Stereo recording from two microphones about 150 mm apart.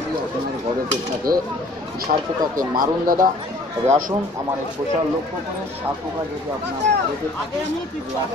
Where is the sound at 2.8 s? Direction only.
65° right (ahead or behind).